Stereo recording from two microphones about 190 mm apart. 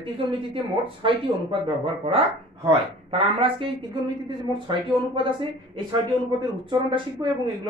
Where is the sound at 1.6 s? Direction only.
30° right (ahead or behind).